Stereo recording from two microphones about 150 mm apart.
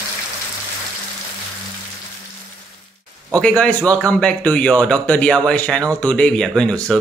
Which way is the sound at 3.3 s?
5° left (ahead or behind).